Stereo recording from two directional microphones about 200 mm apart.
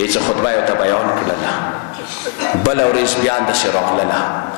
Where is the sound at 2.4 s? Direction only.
20° left (ahead or behind).